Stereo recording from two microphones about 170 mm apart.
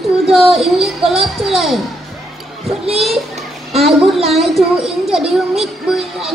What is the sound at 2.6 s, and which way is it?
Speech, 35° right (ahead or behind).